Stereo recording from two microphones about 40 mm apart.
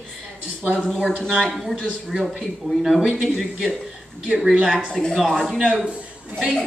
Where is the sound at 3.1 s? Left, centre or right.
Centre.